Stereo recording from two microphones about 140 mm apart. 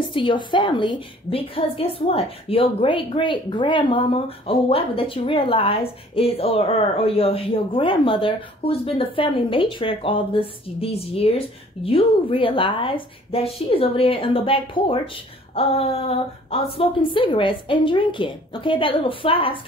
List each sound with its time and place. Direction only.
0.1 s a woman's voice: 35° left (ahead or behind)